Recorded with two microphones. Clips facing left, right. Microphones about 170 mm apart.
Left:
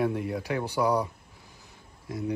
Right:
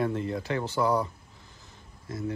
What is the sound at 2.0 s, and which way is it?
Speech, 15° left (ahead or behind).